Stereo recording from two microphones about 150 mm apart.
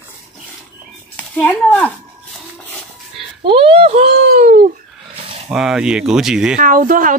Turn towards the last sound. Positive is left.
turn(degrees=-65)  # may be behind; listen again after turning